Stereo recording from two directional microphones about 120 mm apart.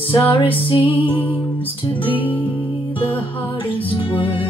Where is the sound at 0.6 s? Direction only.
45° left (ahead or behind).